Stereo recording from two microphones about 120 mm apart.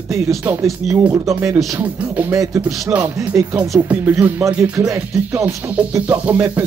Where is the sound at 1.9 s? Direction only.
15° right (ahead or behind).